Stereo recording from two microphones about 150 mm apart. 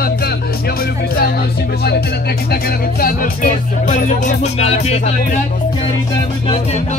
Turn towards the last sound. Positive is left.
turn(degrees=45)  # may be behind; listen again after turning